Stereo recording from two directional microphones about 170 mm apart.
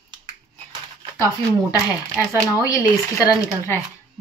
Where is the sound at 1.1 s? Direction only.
20° left (ahead or behind).